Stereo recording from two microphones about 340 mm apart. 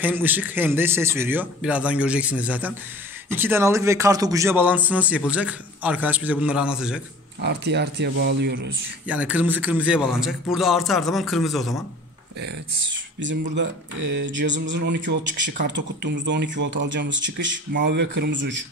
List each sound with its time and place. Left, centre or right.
0.0 s speech: centre
7.4 s speech: right
9.0 s speech: centre
13.2 s speech: right